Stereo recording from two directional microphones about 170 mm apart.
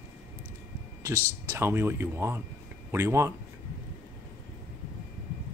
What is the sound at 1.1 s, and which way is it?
Speech, 10° left (ahead or behind).